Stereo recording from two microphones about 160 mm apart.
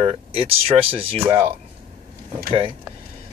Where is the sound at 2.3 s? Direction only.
20° right (ahead or behind).